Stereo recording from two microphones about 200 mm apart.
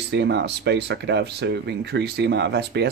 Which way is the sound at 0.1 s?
60° right (ahead or behind).